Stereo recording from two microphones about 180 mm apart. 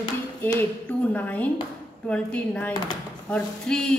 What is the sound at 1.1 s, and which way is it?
A woman's voice, 10° left (ahead or behind).